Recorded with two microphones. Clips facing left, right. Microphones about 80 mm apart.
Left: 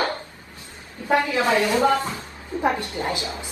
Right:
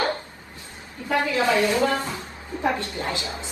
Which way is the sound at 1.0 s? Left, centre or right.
Left.